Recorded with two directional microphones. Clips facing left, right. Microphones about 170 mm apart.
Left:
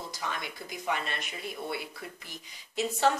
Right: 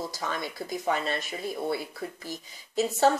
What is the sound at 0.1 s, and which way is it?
Speech, 40° right (ahead or behind).